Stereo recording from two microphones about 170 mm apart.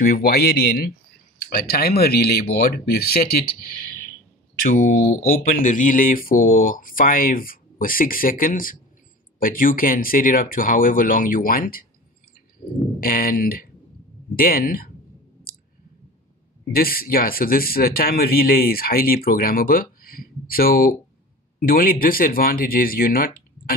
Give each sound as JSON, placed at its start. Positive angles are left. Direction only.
{"t": 0.0, "sound": "speech", "side_deg": 60}
{"t": 4.6, "sound": "speech", "side_deg": 50}
{"t": 13.0, "sound": "speech", "side_deg": 55}
{"t": 16.7, "sound": "speech", "side_deg": 60}